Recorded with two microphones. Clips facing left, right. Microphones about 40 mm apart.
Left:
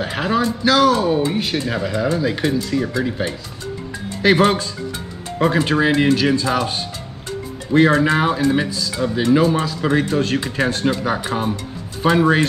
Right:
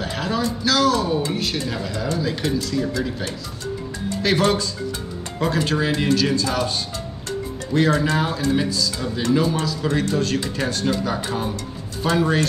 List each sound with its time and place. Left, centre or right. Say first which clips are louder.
0.0 s speech: left 4 dB; left
7.7 s speech: left 5 dB; left